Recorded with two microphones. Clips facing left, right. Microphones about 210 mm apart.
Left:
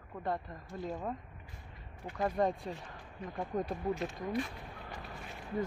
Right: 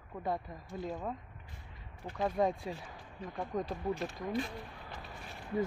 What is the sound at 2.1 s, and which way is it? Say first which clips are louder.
Speech: even; centre (ahead or behind).